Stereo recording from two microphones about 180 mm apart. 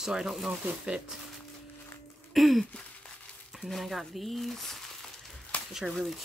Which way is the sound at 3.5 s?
Centre (ahead or behind).